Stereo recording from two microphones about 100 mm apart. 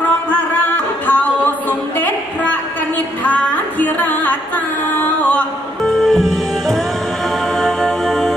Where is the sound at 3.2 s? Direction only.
15° left (ahead or behind).